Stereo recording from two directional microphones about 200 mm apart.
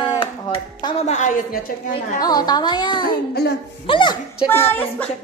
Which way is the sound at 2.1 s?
20° left (ahead or behind).